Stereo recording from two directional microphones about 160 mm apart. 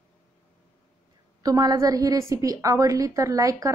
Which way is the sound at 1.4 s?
25° right (ahead or behind).